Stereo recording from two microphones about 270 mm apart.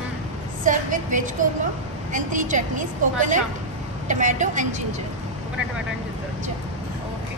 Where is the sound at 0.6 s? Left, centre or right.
Right.